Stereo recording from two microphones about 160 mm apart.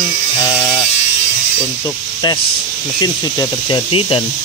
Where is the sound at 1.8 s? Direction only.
25° left (ahead or behind).